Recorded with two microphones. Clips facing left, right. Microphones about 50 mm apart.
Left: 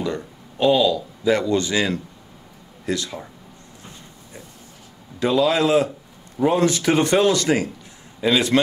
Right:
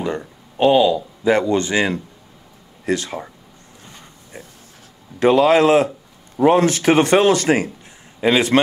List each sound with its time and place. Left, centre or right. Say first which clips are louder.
0.0 s speech: right 2 dB; right
5.2 s a man's voice: right 5 dB; right